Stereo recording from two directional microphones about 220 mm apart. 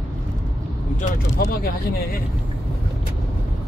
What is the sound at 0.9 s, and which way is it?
Speech, 40° left (ahead or behind).